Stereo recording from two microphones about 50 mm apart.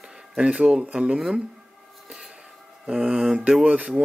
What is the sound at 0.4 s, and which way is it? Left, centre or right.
Speech, centre.